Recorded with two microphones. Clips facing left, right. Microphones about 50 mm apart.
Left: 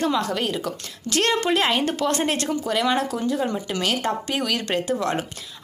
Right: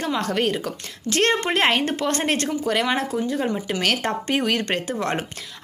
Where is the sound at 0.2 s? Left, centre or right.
Right.